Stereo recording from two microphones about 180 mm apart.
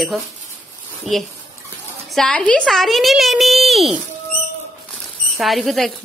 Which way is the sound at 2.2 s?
5° left (ahead or behind).